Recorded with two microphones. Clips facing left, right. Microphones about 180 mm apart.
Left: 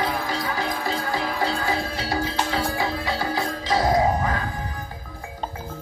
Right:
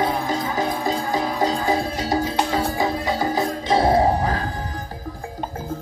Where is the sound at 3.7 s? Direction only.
30° right (ahead or behind).